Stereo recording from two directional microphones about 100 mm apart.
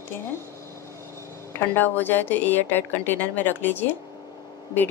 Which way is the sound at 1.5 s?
20° left (ahead or behind).